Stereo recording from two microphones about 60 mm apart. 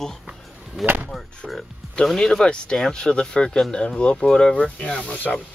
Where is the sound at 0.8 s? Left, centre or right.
Centre.